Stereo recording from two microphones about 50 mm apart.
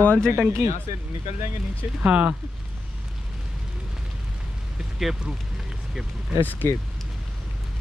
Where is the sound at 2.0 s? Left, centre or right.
Right.